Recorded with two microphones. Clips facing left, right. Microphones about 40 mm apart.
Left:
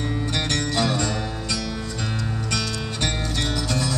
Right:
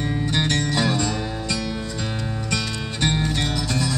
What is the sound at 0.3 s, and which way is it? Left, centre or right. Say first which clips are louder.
Music: right 3 dB; right.